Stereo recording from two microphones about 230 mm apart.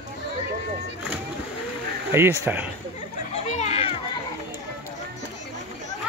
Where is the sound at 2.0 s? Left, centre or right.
Centre.